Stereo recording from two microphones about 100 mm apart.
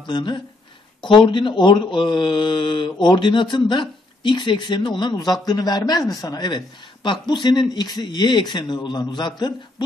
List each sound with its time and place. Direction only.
0.0 s speech: 50° left (ahead or behind)